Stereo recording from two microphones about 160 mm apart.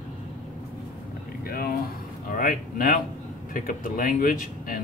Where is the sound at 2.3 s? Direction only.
60° left (ahead or behind).